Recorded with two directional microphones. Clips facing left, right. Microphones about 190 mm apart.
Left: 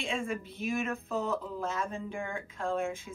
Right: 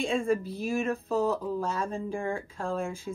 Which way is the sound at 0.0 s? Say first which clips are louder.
Right 7 dB; 35° right (ahead or behind).